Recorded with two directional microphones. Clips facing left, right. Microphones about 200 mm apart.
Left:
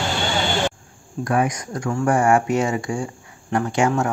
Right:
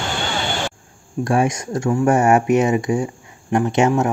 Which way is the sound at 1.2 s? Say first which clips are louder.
Right 3 dB; 25° right (ahead or behind).